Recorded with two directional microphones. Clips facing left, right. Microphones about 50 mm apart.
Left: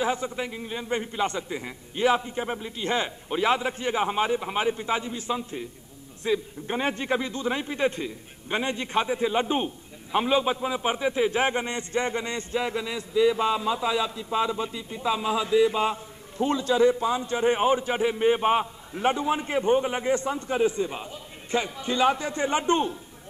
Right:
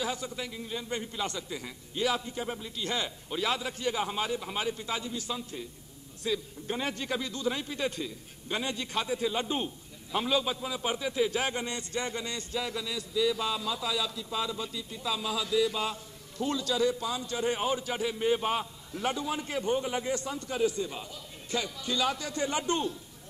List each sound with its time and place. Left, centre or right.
0.0 s a man's voice: left